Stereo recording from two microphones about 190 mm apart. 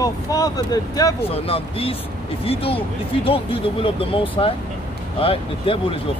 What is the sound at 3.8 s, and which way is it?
Speech, 30° left (ahead or behind).